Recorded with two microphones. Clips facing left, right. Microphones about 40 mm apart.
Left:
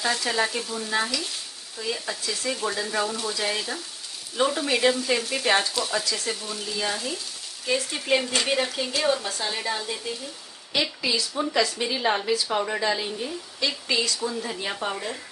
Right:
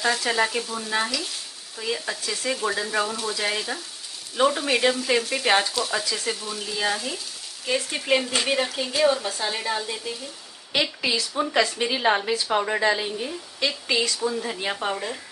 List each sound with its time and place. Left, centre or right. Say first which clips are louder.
0.0 s a woman's voice: right 2 dB; centre
11.0 s a woman's voice: right 1 dB; right
13.0 s a woman's voice: right 1 dB; centre